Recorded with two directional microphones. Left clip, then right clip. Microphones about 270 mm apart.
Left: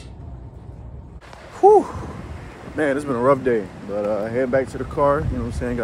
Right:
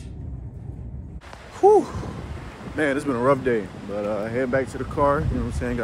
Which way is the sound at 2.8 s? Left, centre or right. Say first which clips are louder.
Left 2 dB; centre.